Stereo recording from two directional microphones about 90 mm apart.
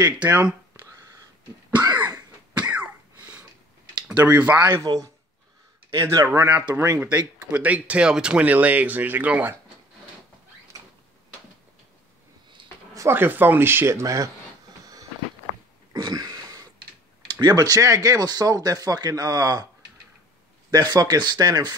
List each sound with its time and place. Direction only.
0.2 s speech: 25° right (ahead or behind)
2.5 s cough: 15° right (ahead or behind)
4.1 s speech: 20° right (ahead or behind)
4.8 s speech: 40° right (ahead or behind)
7.0 s speech: 15° right (ahead or behind)
13.1 s speech: 25° right (ahead or behind)
15.9 s throat clearing: 50° right (ahead or behind)
17.3 s speech: 55° right (ahead or behind)
20.7 s speech: 45° right (ahead or behind)